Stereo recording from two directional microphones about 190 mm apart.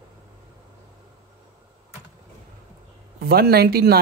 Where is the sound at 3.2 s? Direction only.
55° right (ahead or behind).